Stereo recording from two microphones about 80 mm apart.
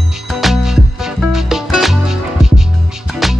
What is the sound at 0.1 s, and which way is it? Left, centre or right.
Music, centre.